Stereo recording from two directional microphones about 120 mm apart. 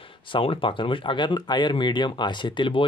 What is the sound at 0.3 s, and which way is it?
Speech, 45° left (ahead or behind).